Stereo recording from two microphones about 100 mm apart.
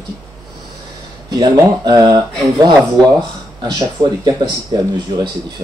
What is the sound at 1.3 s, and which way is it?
Speech, 40° right (ahead or behind).